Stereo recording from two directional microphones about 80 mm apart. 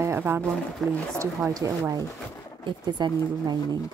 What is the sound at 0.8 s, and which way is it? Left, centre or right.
Speech, centre.